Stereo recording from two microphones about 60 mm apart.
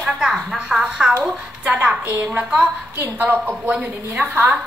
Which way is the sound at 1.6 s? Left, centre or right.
Right.